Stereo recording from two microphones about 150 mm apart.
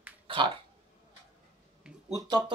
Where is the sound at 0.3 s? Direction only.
35° right (ahead or behind).